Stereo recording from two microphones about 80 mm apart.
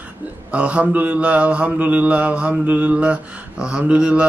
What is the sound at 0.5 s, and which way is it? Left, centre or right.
Mantra, centre.